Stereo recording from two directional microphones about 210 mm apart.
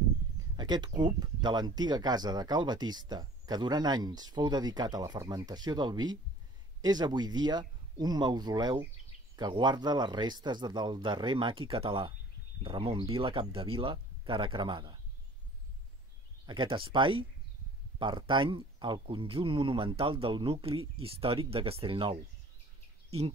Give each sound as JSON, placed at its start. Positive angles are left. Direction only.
{"t": 0.6, "sound": "speech", "side_deg": -20}
{"t": 16.4, "sound": "speech", "side_deg": -25}
{"t": 23.0, "sound": "bird", "side_deg": -30}